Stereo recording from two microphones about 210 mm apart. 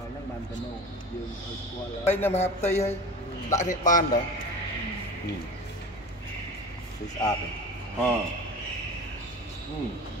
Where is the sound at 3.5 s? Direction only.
35° left (ahead or behind).